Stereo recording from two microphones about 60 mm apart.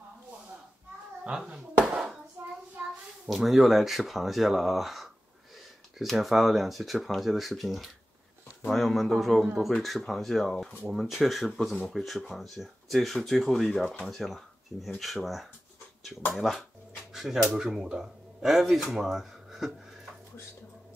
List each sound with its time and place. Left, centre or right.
1.9 s hands: centre
2.8 s a sound: right
3.3 s speech: centre
10.9 s speech: centre
17.1 s dog: centre
17.6 s speech: centre